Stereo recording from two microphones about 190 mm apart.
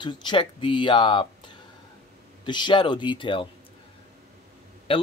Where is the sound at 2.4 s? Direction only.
25° left (ahead or behind).